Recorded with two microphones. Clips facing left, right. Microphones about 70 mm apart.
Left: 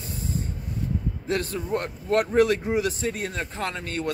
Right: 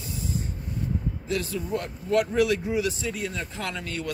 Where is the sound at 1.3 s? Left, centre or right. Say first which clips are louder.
Left 2 dB; left.